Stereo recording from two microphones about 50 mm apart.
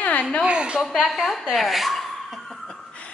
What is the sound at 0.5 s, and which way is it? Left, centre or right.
Speech, centre.